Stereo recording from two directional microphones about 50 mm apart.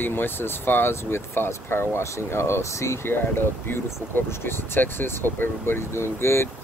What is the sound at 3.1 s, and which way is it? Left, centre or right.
Speech, left.